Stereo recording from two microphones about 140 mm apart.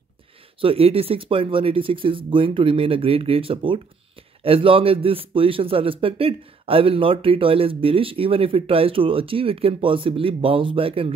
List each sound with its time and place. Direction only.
0.6 s speech: 40° right (ahead or behind)